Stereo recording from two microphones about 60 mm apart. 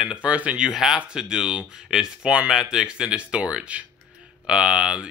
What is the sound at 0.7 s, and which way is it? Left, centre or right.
Speech, centre.